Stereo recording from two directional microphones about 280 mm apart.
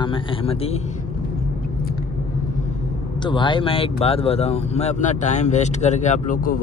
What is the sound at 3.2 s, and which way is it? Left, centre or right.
Speech, centre.